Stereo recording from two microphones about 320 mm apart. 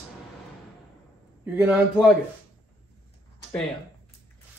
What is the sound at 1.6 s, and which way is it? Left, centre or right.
Speech, centre.